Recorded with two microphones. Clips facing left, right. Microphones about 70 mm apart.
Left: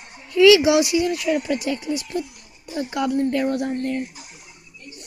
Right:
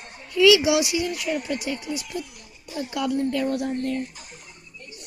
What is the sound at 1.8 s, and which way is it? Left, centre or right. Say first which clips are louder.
Speech: left 5 dB; centre.